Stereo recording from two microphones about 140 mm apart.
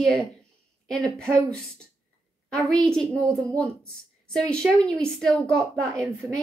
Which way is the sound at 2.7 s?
5° left (ahead or behind).